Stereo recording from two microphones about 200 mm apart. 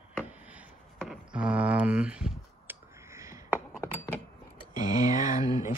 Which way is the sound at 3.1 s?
15° right (ahead or behind).